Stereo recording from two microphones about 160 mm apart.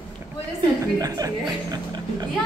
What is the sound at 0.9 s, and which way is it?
Speech, 25° right (ahead or behind).